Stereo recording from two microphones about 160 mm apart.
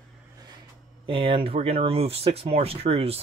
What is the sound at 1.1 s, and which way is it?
Speech, 35° right (ahead or behind).